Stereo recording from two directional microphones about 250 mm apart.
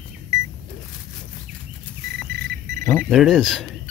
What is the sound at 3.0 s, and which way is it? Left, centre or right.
Speech, centre.